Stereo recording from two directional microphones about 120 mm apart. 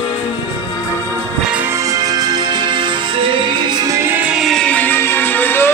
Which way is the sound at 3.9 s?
20° right (ahead or behind).